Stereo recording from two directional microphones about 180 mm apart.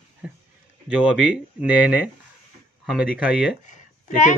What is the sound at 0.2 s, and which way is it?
Speech, 5° right (ahead or behind).